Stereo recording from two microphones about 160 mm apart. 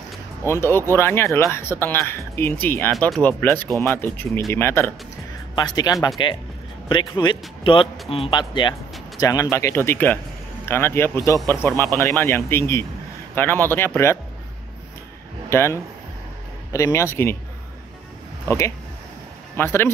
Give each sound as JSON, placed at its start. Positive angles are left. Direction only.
{"t": 0.5, "sound": "speech", "side_deg": 15}
{"t": 5.6, "sound": "speech", "side_deg": 25}
{"t": 15.5, "sound": "speech", "side_deg": 15}
{"t": 18.5, "sound": "speech", "side_deg": 15}